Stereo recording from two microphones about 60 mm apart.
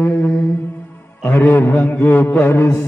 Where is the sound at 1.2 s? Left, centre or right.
Left.